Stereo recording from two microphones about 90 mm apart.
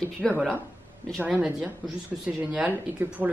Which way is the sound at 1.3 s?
15° right (ahead or behind).